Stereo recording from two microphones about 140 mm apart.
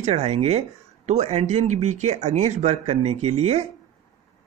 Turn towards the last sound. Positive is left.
turn(degrees=-50)  # may be behind; listen again after turning